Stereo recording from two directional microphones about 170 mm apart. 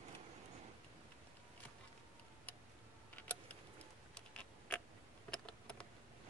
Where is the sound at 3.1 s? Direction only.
10° left (ahead or behind).